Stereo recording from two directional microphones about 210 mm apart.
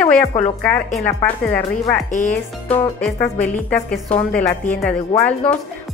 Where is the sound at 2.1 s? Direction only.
35° left (ahead or behind).